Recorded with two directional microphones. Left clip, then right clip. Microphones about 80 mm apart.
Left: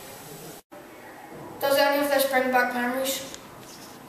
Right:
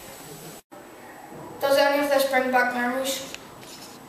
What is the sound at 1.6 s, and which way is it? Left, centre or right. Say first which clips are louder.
A woman's voice: right 1 dB; centre.